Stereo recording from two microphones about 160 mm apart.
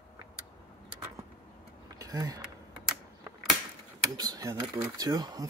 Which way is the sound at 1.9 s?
20° right (ahead or behind).